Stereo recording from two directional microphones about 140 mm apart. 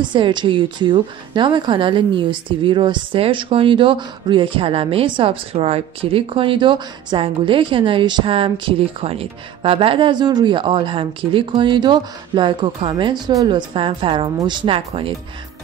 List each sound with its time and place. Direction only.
0.1 s a woman's voice: 35° right (ahead or behind)
13.7 s a woman's voice: 40° right (ahead or behind)